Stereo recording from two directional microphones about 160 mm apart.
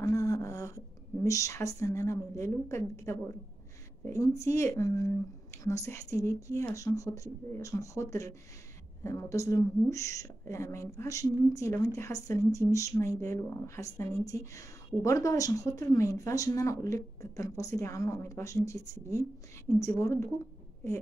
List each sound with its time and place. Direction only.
0.0 s a woman's voice: 20° left (ahead or behind)